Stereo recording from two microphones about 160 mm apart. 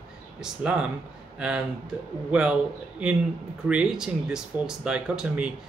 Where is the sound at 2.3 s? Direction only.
5° right (ahead or behind).